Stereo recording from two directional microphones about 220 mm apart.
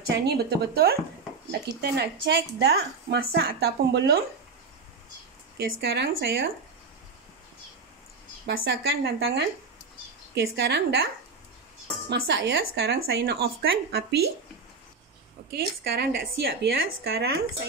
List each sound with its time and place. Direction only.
0.1 s a woman's voice: 50° right (ahead or behind)
5.7 s a woman's voice: 50° right (ahead or behind)
8.5 s a woman's voice: 45° right (ahead or behind)
12.1 s a woman's voice: 50° right (ahead or behind)
15.5 s a woman's voice: 45° right (ahead or behind)